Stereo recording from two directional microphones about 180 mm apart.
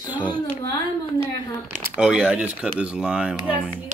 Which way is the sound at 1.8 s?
5° right (ahead or behind).